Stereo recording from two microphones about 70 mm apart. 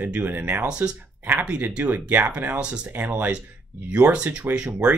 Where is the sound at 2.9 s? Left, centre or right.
Right.